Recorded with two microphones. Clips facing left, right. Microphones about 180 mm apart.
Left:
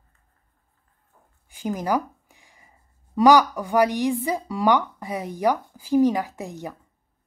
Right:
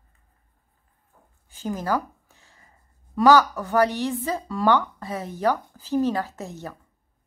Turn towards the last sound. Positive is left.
turn(degrees=15)  # may be behind; listen again after turning